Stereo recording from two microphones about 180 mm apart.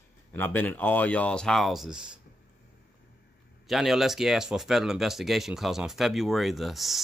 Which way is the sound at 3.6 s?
Centre (ahead or behind).